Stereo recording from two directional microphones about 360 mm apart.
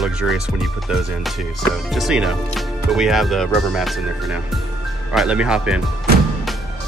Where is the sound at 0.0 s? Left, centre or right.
Centre.